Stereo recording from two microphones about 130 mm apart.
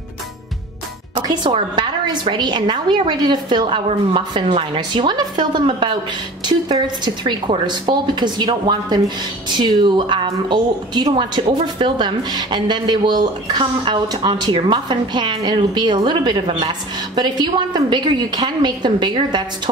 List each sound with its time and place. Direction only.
1.1 s speech: 35° right (ahead or behind)
7.2 s speech: 35° right (ahead or behind)